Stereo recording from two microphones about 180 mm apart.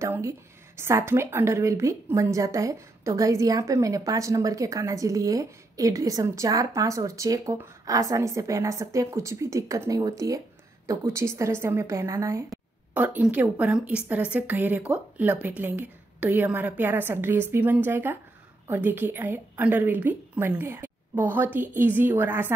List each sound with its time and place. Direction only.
0.0 s a woman's voice: 15° right (ahead or behind)